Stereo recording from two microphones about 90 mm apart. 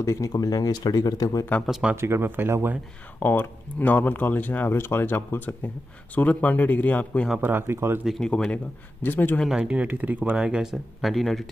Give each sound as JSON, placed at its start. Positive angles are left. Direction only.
{"t": 0.0, "sound": "speech", "side_deg": 35}
{"t": 2.0, "sound": "speech", "side_deg": -30}
{"t": 3.2, "sound": "speech", "side_deg": 20}
{"t": 7.3, "sound": "speech", "side_deg": -20}
{"t": 8.0, "sound": "speech", "side_deg": 0}
{"t": 8.3, "sound": "speech", "side_deg": 10}
{"t": 9.5, "sound": "speech", "side_deg": -10}